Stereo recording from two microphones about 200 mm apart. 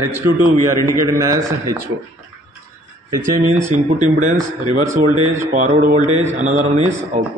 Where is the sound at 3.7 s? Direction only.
35° right (ahead or behind).